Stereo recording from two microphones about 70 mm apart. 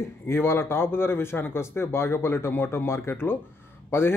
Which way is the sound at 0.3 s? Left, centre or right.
Left.